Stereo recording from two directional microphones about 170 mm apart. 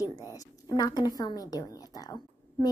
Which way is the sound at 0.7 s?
25° left (ahead or behind).